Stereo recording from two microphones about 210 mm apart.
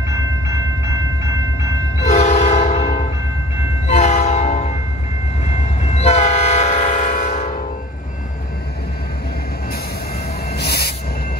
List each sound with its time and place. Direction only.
0.1 s train: 15° right (ahead or behind)
2.0 s train: 35° left (ahead or behind)
3.8 s train horn: 30° left (ahead or behind)
5.4 s train: 30° left (ahead or behind)
10.5 s train: 50° left (ahead or behind)